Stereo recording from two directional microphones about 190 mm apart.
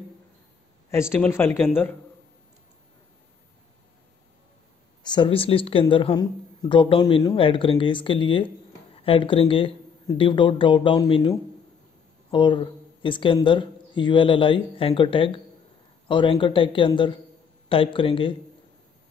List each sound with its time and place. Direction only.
1.1 s speech: 10° left (ahead or behind)
5.0 s speech: 25° left (ahead or behind)